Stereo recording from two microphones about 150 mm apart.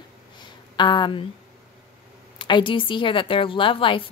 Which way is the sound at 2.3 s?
30° left (ahead or behind).